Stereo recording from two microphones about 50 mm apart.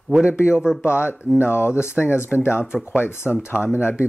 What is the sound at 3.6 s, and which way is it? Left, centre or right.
Speech, right.